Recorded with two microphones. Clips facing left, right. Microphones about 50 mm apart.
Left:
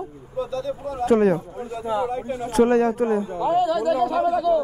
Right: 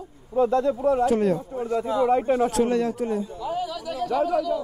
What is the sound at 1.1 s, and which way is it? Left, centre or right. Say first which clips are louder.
Speech: left 4 dB; left.